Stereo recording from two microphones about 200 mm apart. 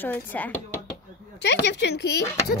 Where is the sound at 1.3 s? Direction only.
60° left (ahead or behind).